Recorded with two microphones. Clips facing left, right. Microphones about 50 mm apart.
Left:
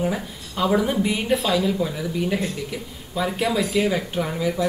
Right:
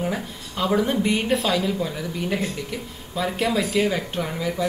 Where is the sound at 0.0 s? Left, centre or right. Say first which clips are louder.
Left 2 dB; centre.